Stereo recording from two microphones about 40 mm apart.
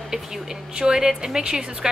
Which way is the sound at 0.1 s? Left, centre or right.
Centre.